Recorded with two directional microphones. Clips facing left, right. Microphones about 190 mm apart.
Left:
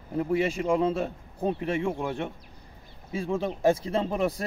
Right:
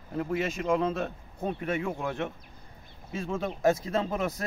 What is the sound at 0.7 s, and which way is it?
Speech, 30° left (ahead or behind).